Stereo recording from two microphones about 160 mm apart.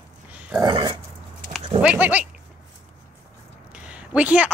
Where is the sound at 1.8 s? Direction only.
10° right (ahead or behind).